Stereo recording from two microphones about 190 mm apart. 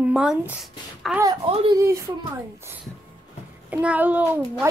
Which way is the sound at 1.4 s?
30° right (ahead or behind).